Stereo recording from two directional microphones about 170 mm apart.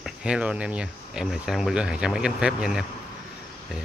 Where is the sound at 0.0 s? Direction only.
5° right (ahead or behind).